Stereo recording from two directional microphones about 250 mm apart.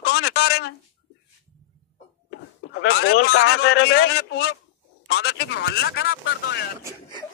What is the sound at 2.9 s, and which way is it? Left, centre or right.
A man's voice, left.